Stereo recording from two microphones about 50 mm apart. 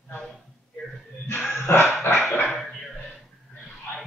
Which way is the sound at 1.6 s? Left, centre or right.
Left.